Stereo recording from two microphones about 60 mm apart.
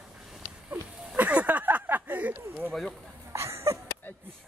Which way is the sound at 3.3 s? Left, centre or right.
Right.